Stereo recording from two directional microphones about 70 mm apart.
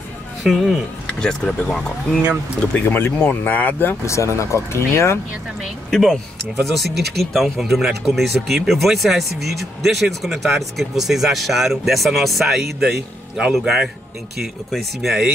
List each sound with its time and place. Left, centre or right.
0.4 s speech: centre
1.0 s speech: centre
2.7 s speech: left
4.0 s speech: left
5.9 s speech: centre